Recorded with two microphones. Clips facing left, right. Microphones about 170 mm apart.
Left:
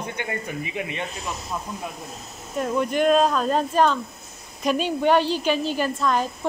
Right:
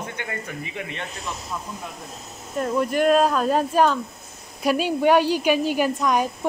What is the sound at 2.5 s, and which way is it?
A woman's voice, centre (ahead or behind).